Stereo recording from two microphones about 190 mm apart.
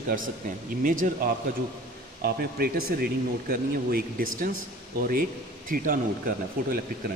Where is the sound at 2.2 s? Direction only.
55° right (ahead or behind).